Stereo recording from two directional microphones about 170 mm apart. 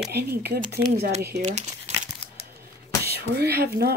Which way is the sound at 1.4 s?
45° right (ahead or behind).